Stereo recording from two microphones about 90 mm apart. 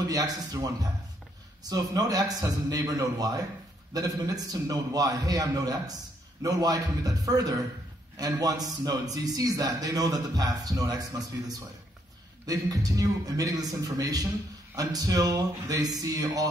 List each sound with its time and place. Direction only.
0.1 s a man's voice: 45° right (ahead or behind)